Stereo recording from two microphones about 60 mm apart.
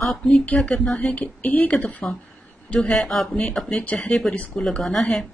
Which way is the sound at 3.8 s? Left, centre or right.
Left.